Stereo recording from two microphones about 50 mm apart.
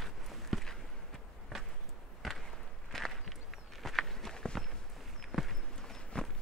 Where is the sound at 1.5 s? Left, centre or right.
Centre.